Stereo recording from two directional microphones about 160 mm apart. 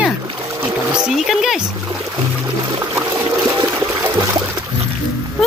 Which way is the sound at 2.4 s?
25° right (ahead or behind).